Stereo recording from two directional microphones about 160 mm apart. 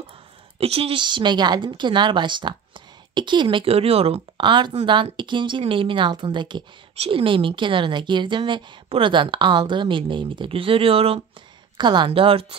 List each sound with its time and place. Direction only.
0.6 s speech: 35° right (ahead or behind)